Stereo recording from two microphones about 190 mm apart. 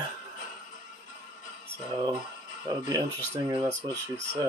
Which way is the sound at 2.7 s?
20° right (ahead or behind).